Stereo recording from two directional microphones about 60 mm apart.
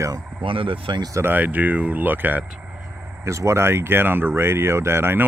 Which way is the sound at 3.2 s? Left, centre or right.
Right.